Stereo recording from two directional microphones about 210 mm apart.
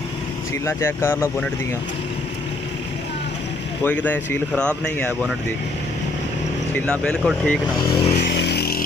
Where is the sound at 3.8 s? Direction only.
5° left (ahead or behind).